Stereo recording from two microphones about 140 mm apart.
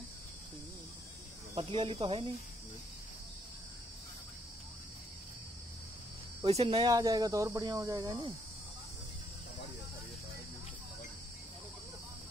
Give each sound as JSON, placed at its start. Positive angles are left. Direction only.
{"t": 1.5, "sound": "speech", "side_deg": -40}
{"t": 6.4, "sound": "speech", "side_deg": -45}
{"t": 6.8, "sound": "speech", "side_deg": -25}